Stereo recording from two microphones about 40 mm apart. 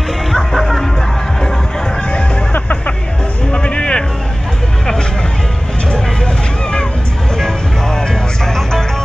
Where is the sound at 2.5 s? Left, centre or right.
Left.